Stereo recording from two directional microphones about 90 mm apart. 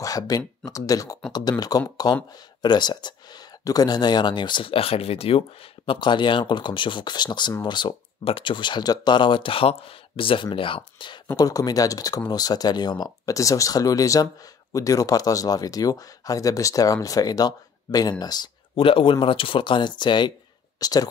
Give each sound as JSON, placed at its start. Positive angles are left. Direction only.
{"t": 0.0, "sound": "speech", "side_deg": 40}
{"t": 5.9, "sound": "speech", "side_deg": 60}
{"t": 11.3, "sound": "speech", "side_deg": 45}
{"t": 18.8, "sound": "speech", "side_deg": 85}
{"t": 20.8, "sound": "speech", "side_deg": 45}